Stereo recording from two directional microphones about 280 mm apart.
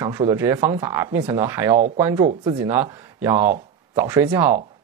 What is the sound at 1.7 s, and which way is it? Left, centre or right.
Speech, right.